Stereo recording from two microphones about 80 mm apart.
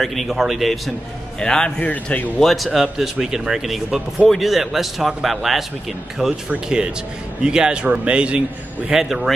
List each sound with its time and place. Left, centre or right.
0.0 s speech: centre
1.4 s a man's voice: centre
2.4 s speech: centre